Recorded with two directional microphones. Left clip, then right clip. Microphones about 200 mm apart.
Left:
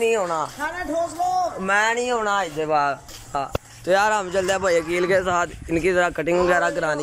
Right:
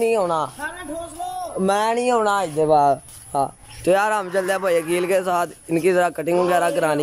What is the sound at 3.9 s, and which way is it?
Speech, centre (ahead or behind).